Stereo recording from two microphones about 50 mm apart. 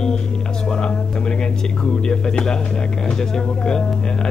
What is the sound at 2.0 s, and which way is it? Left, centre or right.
A man's voice, centre.